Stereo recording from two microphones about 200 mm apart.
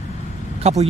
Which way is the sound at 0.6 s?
30° right (ahead or behind).